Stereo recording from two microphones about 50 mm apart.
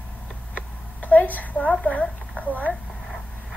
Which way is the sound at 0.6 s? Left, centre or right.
Left.